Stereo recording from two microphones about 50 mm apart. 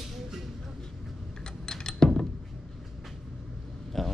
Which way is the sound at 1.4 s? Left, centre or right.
Centre.